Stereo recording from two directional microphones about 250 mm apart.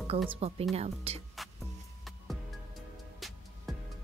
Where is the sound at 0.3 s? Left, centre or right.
Right.